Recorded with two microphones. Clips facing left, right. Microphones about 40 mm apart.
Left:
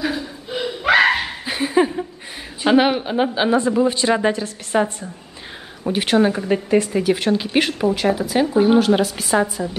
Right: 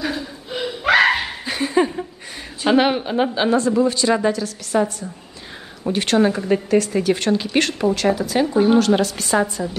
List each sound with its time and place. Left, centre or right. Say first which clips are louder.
0.0 s laughter: left 1 dB; centre
2.6 s speech: left 1 dB; centre
3.5 s a woman's voice: even; centre
5.9 s a woman's voice: even; centre